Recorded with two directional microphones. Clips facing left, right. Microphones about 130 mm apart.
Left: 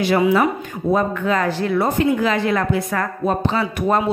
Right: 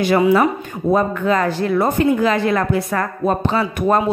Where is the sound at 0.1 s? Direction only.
40° right (ahead or behind).